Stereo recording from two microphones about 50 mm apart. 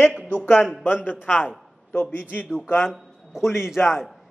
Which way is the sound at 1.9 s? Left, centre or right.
Left.